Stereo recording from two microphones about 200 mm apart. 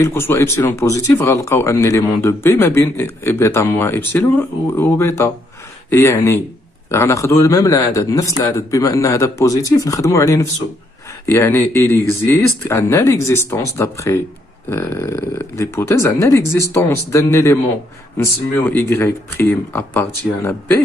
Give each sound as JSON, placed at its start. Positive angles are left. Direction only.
{"t": 0.0, "sound": "speech", "side_deg": 10}